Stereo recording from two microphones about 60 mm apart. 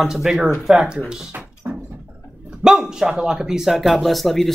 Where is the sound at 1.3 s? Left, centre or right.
Right.